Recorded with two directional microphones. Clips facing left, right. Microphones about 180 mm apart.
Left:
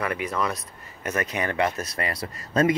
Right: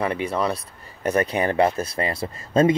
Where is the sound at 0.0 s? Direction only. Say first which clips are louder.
Right 4 dB; 30° right (ahead or behind).